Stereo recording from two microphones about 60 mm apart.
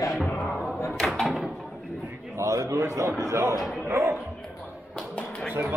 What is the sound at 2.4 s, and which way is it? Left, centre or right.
A man's voice, right.